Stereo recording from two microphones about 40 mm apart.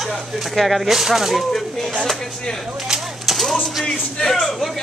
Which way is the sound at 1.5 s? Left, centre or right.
Centre.